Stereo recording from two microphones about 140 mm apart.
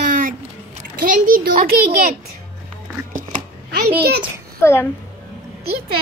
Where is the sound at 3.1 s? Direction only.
70° right (ahead or behind); by 4.1 s 90° right.